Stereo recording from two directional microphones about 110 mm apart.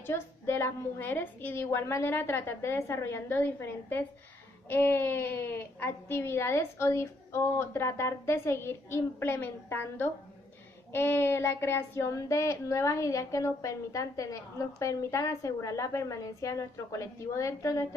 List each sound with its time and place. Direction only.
0.0 s speech: 20° left (ahead or behind)